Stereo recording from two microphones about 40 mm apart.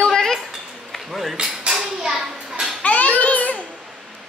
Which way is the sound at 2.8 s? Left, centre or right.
Left.